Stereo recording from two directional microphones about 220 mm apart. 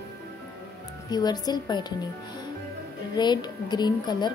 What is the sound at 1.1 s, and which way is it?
Speech, 20° left (ahead or behind).